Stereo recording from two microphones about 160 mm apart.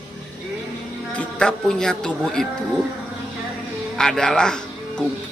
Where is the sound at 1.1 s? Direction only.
5° left (ahead or behind).